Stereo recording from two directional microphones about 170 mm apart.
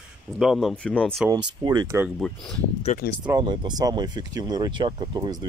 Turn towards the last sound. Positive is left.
turn(degrees=-25)  # may be behind; listen again after turning